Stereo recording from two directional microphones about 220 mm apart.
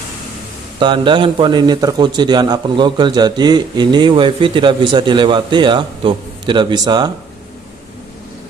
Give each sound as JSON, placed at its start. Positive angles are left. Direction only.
{"t": 0.7, "sound": "a man's voice", "side_deg": -20}